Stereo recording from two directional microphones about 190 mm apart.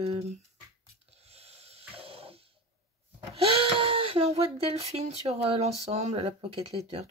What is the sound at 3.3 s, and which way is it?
Speech, 30° right (ahead or behind).